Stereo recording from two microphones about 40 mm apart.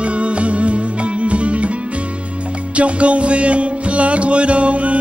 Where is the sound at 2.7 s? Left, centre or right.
Right.